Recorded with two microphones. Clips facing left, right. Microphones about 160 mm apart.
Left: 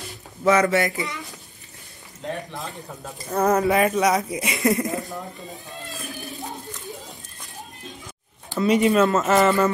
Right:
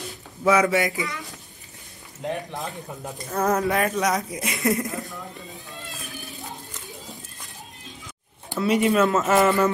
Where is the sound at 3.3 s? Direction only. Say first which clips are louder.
Left 3 dB; 5° left (ahead or behind).